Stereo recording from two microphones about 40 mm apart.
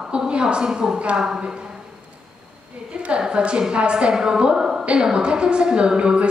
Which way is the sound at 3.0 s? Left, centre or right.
Right.